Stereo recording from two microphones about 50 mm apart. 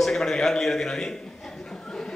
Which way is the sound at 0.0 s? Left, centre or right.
Centre.